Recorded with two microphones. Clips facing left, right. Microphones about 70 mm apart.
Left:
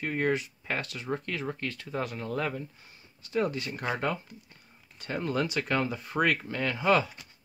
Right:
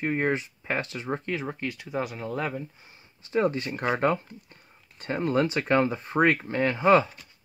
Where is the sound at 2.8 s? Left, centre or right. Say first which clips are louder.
Right 1 dB; right.